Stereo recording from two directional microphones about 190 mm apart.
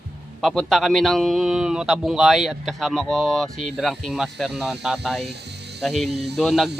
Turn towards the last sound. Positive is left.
turn(degrees=0)  # may be behind; listen again after turning